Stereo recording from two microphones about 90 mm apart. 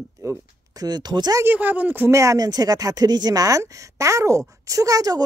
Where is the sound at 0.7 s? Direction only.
50° right (ahead or behind).